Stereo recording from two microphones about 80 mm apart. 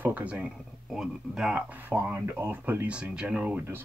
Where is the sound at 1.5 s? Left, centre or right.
Centre.